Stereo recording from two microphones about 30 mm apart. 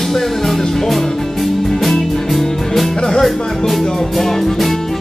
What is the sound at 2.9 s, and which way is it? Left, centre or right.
Music, left.